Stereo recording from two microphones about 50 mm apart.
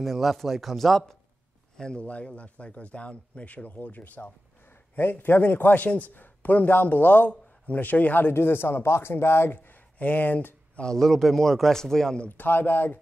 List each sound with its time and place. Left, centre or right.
0.0 s a man's voice: centre
1.8 s a man's voice: centre; by 8.3 s left
8.3 s speech: left
11.0 s a man's voice: centre
12.3 s speech: left